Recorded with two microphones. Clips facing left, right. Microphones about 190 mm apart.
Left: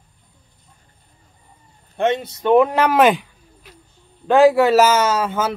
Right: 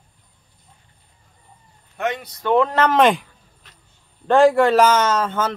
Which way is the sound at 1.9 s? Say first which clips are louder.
Left 6 dB; 25° left (ahead or behind).